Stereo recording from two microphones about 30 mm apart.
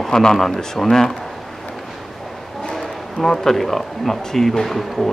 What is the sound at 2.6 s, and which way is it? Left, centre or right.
Speech, centre.